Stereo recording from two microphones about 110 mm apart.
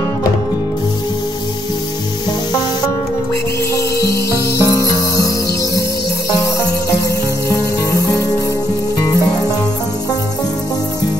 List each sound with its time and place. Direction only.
3.7 s music: 30° left (ahead or behind)
7.4 s music: 30° left (ahead or behind)